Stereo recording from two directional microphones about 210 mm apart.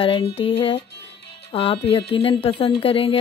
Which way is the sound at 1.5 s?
25° left (ahead or behind).